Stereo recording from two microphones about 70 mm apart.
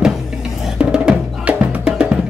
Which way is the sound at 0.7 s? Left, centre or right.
Centre.